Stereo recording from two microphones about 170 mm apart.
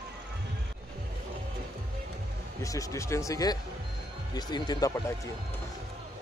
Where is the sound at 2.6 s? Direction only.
20° left (ahead or behind).